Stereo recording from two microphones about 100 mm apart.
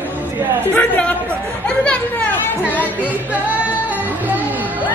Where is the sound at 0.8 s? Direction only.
10° left (ahead or behind).